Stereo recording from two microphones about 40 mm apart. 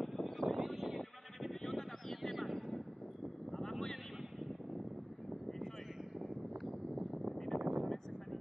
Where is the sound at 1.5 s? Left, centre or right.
Centre.